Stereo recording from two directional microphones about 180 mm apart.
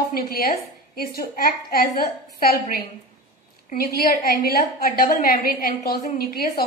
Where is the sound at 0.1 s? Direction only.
55° left (ahead or behind).